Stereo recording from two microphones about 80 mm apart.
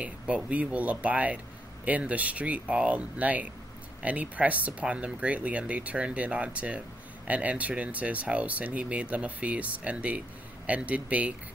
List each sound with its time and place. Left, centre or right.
0.0 s speech: centre